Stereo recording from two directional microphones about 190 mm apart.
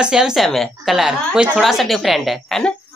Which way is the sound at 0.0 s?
5° right (ahead or behind).